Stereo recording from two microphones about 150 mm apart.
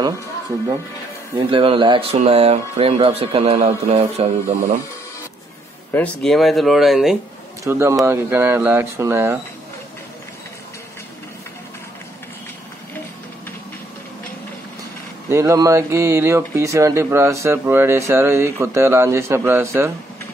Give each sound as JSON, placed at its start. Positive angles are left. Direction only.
{"t": 1.5, "sound": "speech", "side_deg": -35}
{"t": 5.9, "sound": "speech", "side_deg": 5}
{"t": 7.6, "sound": "speech", "side_deg": -20}
{"t": 15.2, "sound": "speech", "side_deg": -20}